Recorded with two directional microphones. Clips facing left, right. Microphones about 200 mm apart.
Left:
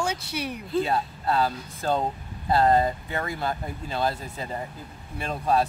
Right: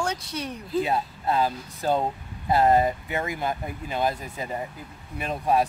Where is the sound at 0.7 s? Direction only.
15° right (ahead or behind).